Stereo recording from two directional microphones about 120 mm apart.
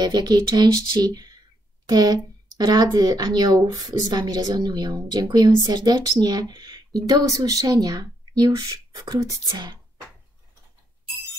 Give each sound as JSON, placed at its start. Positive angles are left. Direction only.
{"t": 0.0, "sound": "speech", "side_deg": -35}